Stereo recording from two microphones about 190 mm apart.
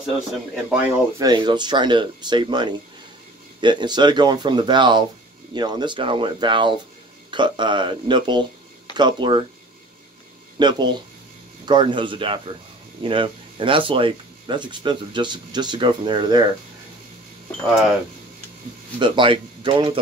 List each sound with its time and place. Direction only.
0.7 s speech: 20° right (ahead or behind)
10.6 s speech: 25° right (ahead or behind)
18.9 s speech: 25° right (ahead or behind)